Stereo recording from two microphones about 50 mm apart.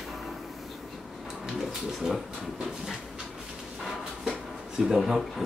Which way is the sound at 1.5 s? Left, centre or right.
Centre.